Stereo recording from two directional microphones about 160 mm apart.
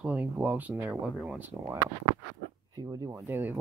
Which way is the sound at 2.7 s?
25° right (ahead or behind).